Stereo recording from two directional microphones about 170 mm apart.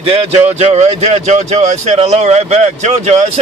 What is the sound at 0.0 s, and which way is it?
A man's voice, 35° right (ahead or behind).